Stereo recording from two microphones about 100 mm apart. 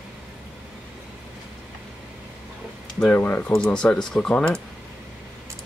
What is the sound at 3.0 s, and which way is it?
Speech, 15° left (ahead or behind).